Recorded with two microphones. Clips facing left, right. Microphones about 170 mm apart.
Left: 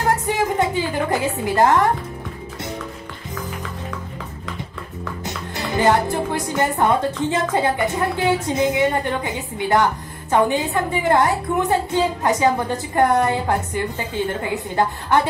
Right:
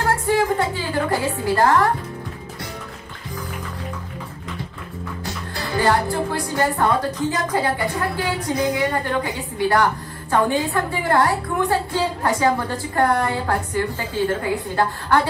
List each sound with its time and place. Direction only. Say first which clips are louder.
0.0 s music: right 1 dB; 20° left (ahead or behind)
5.2 s speech: left 2 dB; 20° left (ahead or behind)